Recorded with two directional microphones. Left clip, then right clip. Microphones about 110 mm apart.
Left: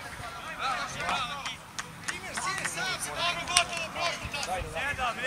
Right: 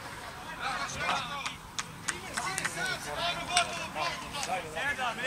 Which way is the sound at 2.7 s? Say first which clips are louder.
Left 2 dB; 20° left (ahead or behind).